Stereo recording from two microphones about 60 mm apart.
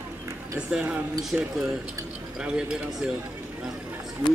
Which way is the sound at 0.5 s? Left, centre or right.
Centre.